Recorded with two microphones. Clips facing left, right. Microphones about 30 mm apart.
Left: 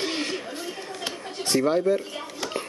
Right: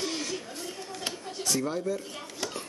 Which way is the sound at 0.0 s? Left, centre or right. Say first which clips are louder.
Left 5 dB; left.